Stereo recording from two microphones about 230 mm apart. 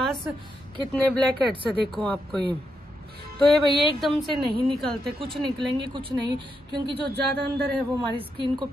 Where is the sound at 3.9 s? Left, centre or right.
Centre.